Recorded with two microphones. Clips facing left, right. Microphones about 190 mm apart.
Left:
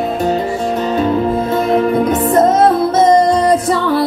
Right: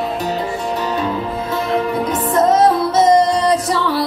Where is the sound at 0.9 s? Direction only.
50° left (ahead or behind).